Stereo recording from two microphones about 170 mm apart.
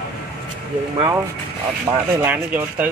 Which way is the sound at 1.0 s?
20° right (ahead or behind).